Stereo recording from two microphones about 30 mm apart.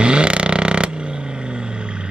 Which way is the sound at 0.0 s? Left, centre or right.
Right.